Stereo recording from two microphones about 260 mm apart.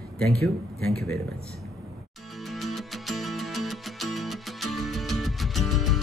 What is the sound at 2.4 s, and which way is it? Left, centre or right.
Music, centre.